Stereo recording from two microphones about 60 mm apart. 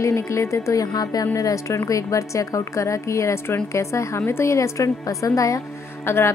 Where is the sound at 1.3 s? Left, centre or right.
Left.